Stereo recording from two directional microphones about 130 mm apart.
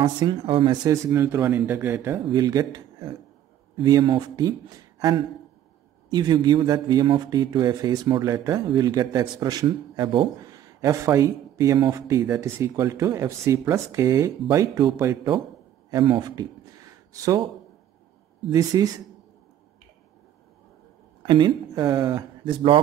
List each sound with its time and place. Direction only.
0.0 s speech: 40° right (ahead or behind)
0.8 s a man's voice: 20° right (ahead or behind)
18.5 s a man's voice: 30° right (ahead or behind)
21.3 s a man's voice: 35° right (ahead or behind)
22.4 s speech: 40° right (ahead or behind)